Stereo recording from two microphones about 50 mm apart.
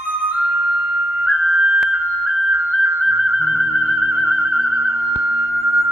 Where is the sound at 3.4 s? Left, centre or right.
Centre.